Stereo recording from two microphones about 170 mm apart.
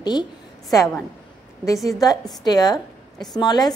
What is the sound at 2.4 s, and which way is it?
A woman's voice, 25° left (ahead or behind).